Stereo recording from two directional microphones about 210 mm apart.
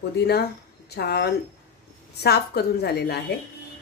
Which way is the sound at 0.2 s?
50° left (ahead or behind).